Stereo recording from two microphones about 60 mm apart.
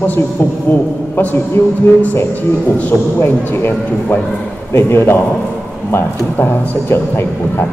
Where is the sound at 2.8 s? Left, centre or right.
Left.